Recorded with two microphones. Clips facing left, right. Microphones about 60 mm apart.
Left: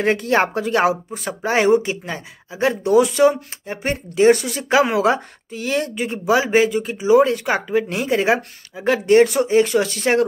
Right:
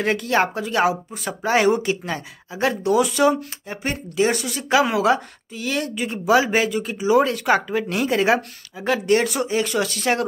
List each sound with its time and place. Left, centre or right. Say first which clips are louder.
0.0 s speech: left 2 dB; left
6.0 s speech: right 2 dB; centre